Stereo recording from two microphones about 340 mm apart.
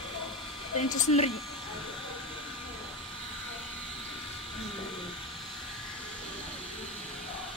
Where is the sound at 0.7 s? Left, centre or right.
Centre.